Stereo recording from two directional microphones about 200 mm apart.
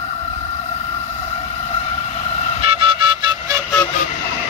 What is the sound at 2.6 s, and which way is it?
Music, 25° right (ahead or behind).